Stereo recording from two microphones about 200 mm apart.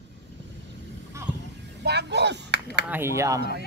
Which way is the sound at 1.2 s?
15° right (ahead or behind).